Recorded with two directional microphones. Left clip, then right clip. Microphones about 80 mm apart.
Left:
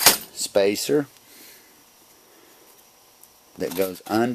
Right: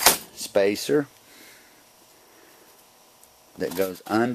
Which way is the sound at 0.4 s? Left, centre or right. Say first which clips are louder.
Left 1 dB; left.